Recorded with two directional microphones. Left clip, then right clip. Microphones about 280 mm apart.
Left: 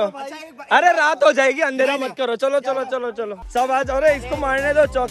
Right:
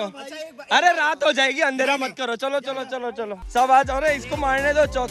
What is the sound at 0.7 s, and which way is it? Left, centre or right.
A man's voice, centre.